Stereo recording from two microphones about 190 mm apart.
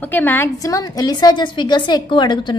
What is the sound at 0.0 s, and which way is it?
A woman's voice, 10° left (ahead or behind).